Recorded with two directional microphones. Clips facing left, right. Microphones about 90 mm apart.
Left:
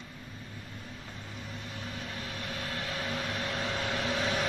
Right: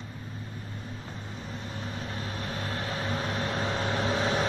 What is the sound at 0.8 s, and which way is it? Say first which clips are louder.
Vehicle: right 4 dB; 35° right (ahead or behind).